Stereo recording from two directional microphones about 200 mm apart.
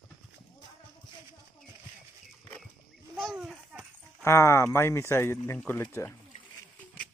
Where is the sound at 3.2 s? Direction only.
Centre (ahead or behind).